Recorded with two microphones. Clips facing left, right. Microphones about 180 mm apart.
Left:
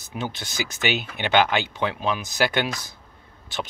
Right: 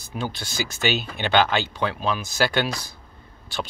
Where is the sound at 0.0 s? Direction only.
20° left (ahead or behind).